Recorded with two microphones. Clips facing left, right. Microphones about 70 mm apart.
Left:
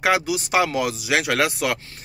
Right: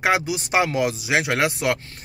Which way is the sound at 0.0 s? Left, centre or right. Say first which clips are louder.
Left 1 dB; right.